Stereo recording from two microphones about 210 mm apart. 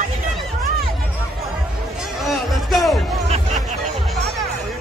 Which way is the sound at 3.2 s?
30° right (ahead or behind).